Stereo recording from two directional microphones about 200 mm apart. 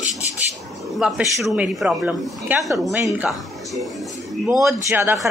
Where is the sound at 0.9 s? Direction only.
5° right (ahead or behind).